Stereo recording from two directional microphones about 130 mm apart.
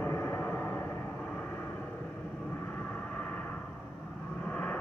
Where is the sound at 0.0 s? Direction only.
20° left (ahead or behind).